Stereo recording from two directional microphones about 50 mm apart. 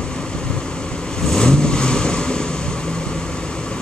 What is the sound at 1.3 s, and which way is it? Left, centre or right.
Vehicle, centre.